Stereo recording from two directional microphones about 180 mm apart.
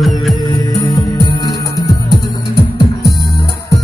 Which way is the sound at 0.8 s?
30° left (ahead or behind).